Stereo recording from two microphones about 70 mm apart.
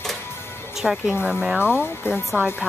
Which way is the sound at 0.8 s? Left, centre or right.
Centre.